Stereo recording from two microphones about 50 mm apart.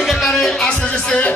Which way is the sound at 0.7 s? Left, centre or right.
Left.